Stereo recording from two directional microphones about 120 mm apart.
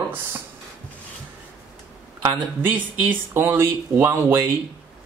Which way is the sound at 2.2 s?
20° right (ahead or behind).